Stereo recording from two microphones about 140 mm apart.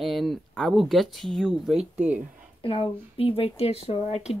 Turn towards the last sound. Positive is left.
turn(degrees=50)  # may be behind; listen again after turning